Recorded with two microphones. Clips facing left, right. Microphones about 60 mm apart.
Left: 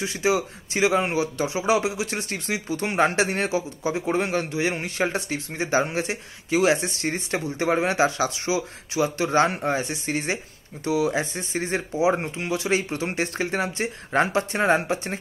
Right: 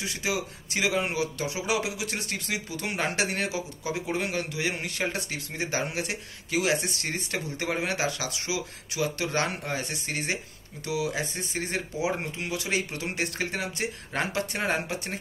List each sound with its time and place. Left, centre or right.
0.0 s a man's voice: left